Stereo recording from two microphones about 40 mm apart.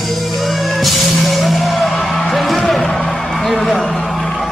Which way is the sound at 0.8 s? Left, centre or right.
Centre.